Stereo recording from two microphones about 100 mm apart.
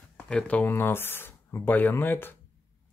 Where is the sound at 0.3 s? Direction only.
10° left (ahead or behind).